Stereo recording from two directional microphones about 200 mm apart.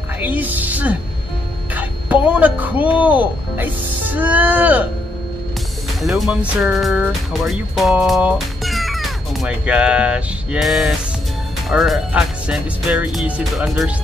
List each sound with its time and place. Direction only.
0.2 s a man's voice: 10° right (ahead or behind)
5.9 s speech: centre (ahead or behind)